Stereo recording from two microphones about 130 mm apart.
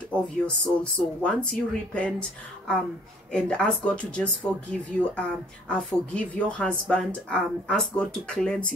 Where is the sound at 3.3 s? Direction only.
10° left (ahead or behind).